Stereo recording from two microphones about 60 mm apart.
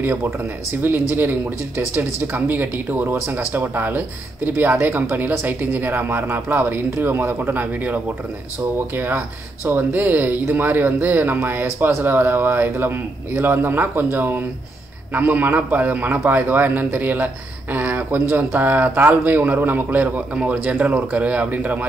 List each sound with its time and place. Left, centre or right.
0.0 s a man's voice: right
20.3 s a man's voice: centre